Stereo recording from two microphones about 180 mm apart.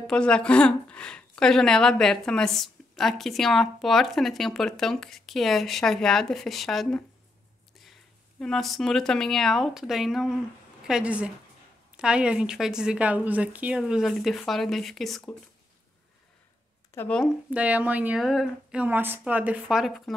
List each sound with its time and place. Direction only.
0.0 s speech: 5° left (ahead or behind)
8.4 s speech: centre (ahead or behind)
16.9 s speech: 10° left (ahead or behind)
17.5 s speech: 10° right (ahead or behind)